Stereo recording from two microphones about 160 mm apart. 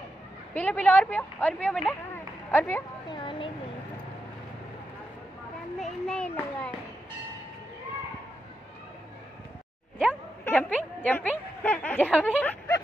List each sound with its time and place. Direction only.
0.6 s a woman's voice: 10° left (ahead or behind)
3.1 s speech: 30° left (ahead or behind)
5.8 s a child's voice: 5° left (ahead or behind)
9.9 s a sound: 10° left (ahead or behind)
11.0 s a woman's voice: 10° left (ahead or behind)